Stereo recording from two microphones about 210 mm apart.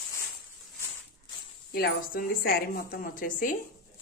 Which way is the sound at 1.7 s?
45° left (ahead or behind).